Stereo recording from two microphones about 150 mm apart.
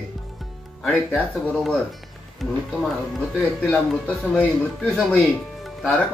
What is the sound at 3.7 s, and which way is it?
Speech, 5° left (ahead or behind).